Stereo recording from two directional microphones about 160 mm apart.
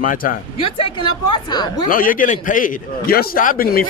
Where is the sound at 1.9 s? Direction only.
60° left (ahead or behind).